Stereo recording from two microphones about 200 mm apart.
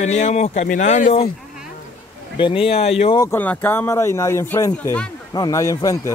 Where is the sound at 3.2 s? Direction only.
10° left (ahead or behind).